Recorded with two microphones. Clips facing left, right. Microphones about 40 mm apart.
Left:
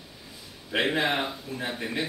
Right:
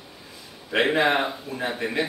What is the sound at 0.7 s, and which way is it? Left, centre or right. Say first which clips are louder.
A man's voice: right 5 dB; centre.